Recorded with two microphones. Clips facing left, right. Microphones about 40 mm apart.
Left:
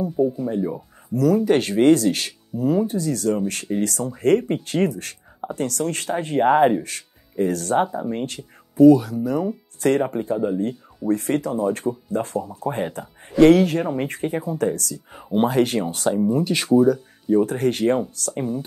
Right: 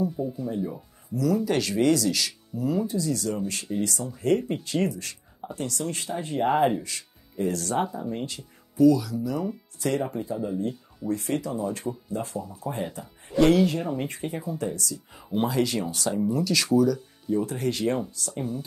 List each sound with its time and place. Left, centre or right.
0.1 s speech: centre
0.5 s speech: centre
1.1 s speech: left
7.8 s speech: left
10.3 s speech: left
11.1 s speech: left
13.4 s speech: left